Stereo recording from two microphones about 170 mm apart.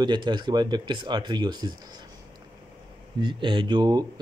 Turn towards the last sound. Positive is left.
turn(degrees=-25)  # may be behind; listen again after turning